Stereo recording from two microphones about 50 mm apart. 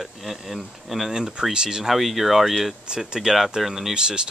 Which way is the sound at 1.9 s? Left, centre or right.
Centre.